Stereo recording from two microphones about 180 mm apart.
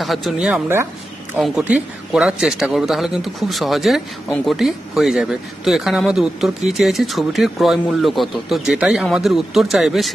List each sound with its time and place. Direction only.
0.0 s speech: centre (ahead or behind)